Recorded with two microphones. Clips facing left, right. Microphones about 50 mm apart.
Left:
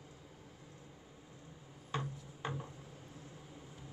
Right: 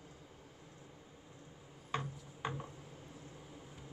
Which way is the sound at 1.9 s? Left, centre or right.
Centre.